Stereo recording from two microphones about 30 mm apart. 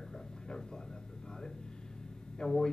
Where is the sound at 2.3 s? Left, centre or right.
Left.